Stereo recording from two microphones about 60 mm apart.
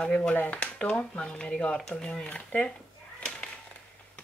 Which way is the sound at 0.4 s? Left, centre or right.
Left.